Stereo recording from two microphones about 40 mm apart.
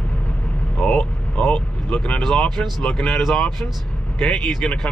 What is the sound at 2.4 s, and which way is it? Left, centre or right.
Speech, centre.